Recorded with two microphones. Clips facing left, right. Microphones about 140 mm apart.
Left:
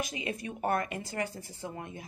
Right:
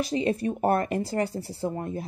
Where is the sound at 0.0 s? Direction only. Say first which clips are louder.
Right 10 dB; 35° right (ahead or behind).